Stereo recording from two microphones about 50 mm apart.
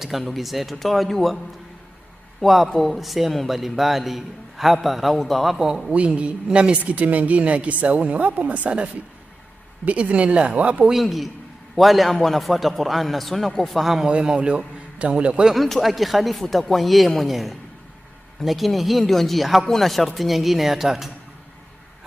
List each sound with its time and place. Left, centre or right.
0.0 s a man's voice: centre
2.4 s a man's voice: centre
5.9 s speech: right
6.8 s speech: right
9.8 s speech: right
10.9 s a man's voice: centre
14.0 s a man's voice: centre
15.5 s a man's voice: centre